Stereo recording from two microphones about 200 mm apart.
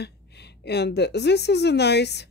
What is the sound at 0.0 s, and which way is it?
A woman's voice, 55° left (ahead or behind).